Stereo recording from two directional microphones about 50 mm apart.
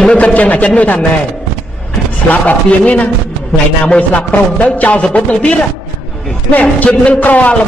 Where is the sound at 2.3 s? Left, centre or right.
Left.